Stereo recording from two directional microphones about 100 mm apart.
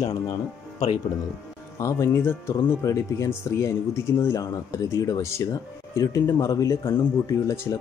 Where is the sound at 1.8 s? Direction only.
30° left (ahead or behind).